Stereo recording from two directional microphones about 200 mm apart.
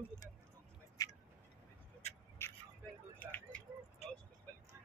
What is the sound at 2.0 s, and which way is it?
Vehicle, 30° left (ahead or behind).